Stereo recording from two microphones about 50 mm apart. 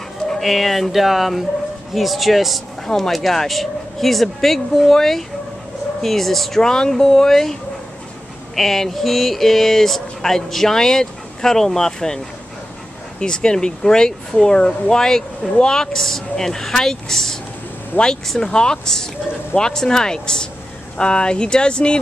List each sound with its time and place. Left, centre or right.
0.3 s speech: centre
8.5 s speech: centre
13.2 s speech: centre